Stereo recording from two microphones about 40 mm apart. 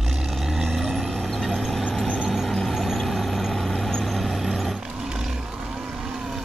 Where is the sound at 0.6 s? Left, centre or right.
Centre.